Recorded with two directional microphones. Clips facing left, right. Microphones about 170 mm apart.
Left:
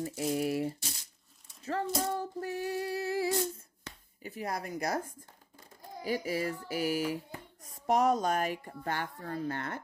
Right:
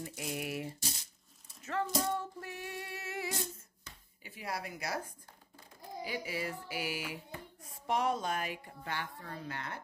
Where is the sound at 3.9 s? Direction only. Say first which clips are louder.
Left 7 dB; 65° left (ahead or behind).